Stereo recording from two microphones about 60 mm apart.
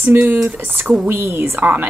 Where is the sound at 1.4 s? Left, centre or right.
Right.